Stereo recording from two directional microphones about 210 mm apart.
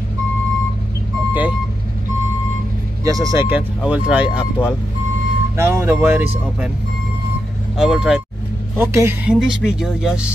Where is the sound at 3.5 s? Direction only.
5° right (ahead or behind).